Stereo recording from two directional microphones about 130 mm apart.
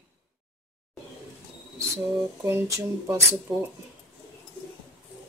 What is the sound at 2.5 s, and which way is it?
Speech, 20° right (ahead or behind).